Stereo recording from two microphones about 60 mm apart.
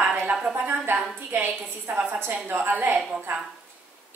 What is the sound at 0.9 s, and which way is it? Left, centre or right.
A woman's voice, right.